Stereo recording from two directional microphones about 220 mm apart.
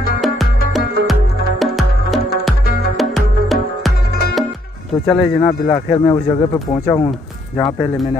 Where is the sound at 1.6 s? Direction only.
Centre (ahead or behind).